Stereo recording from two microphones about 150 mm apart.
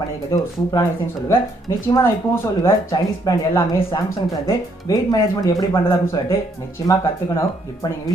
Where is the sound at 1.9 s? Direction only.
20° left (ahead or behind).